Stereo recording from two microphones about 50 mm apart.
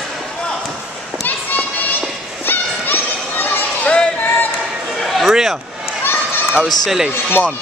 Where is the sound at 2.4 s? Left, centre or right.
Left.